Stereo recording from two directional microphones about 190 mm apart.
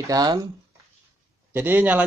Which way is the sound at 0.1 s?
20° right (ahead or behind).